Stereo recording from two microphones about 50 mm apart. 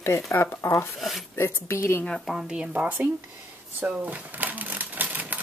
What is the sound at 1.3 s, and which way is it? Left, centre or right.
Speech, left.